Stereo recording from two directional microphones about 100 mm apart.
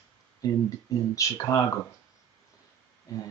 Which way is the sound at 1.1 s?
35° left (ahead or behind).